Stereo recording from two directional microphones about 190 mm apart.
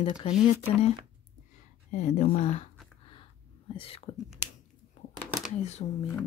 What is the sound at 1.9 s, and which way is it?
Speech, 40° left (ahead or behind).